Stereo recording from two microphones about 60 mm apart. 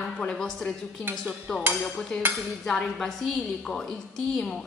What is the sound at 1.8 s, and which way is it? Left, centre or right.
A woman's voice, centre.